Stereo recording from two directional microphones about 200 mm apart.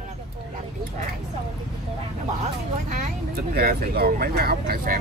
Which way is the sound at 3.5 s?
50° right (ahead or behind).